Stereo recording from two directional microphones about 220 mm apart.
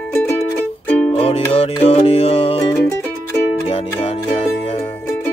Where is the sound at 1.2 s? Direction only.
25° left (ahead or behind).